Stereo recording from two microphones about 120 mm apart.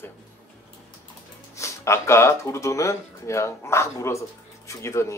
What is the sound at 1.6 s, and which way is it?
Speech, 20° left (ahead or behind).